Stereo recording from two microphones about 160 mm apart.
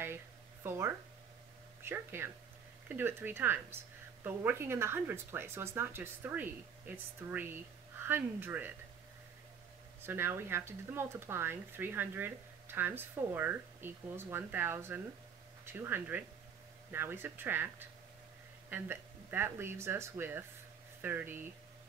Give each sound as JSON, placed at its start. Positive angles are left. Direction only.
{"t": 0.7, "sound": "speech", "side_deg": -15}
{"t": 10.0, "sound": "speech", "side_deg": -15}